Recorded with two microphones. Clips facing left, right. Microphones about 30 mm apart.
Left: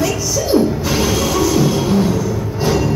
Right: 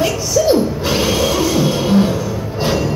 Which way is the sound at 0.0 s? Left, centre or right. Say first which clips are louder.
Right 3 dB; right.